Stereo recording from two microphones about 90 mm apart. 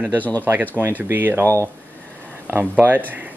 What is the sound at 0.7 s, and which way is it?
Speech, 25° right (ahead or behind).